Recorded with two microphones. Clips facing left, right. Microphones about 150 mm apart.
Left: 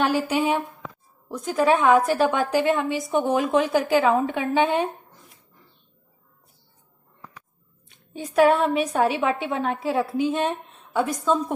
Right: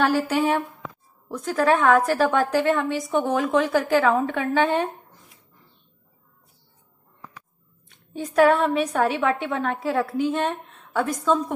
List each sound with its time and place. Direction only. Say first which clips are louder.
0.0 s a woman's voice: right 1 dB; 15° left (ahead or behind)
3.3 s a woman's voice: left 1 dB; 20° left (ahead or behind)
8.2 s a woman's voice: even; 10° left (ahead or behind)